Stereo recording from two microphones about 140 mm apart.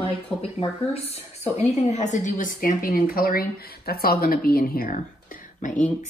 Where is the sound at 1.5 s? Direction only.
55° left (ahead or behind).